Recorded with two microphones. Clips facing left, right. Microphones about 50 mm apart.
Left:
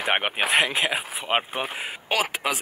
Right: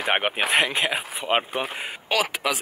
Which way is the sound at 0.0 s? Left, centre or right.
Centre.